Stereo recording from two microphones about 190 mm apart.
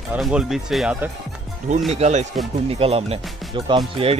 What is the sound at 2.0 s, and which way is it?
Speech, 40° right (ahead or behind).